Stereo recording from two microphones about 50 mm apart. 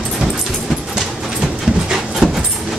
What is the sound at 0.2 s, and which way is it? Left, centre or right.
Dog, centre.